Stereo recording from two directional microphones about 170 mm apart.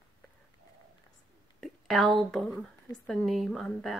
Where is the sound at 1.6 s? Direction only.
Centre (ahead or behind).